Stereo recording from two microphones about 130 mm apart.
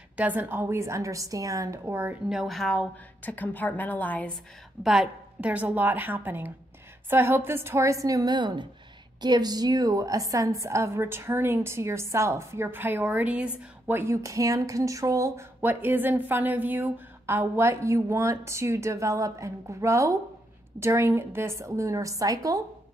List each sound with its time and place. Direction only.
0.2 s speech: 15° right (ahead or behind)
2.2 s a woman's voice: centre (ahead or behind)
4.8 s a woman's voice: 5° right (ahead or behind); by 22.6 s 25° right (ahead or behind)